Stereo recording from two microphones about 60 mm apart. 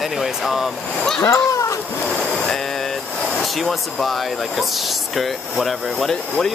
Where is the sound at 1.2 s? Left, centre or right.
Left.